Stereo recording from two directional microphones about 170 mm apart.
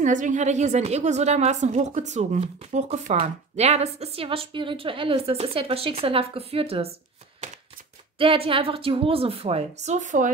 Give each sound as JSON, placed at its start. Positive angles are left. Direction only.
{"t": 0.0, "sound": "a woman's voice", "side_deg": -50}
{"t": 8.2, "sound": "a woman's voice", "side_deg": -30}